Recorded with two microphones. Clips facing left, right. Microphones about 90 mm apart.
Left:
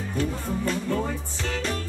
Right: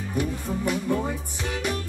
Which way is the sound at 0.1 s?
15° right (ahead or behind).